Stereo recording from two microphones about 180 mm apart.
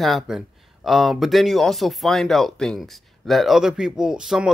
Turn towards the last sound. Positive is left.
turn(degrees=-5)  # may be behind; listen again after turning